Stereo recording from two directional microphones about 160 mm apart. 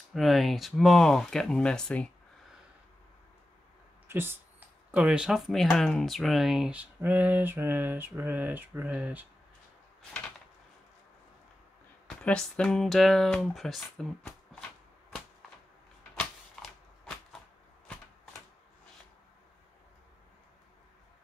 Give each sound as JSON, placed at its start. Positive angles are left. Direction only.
{"t": 0.1, "sound": "speech", "side_deg": 0}
{"t": 4.1, "sound": "speech", "side_deg": -15}
{"t": 12.1, "sound": "speech", "side_deg": 5}
{"t": 16.6, "sound": "shuffling cards", "side_deg": 5}